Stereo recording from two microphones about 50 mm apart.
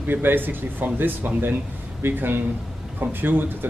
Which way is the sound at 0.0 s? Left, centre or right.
Right.